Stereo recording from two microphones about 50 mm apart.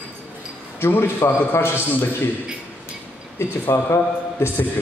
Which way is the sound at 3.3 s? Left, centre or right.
Left.